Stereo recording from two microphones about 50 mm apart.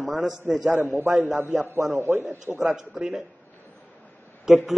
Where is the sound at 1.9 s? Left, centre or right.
Right.